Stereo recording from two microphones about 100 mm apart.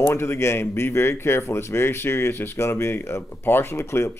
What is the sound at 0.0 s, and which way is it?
Speech, 25° left (ahead or behind).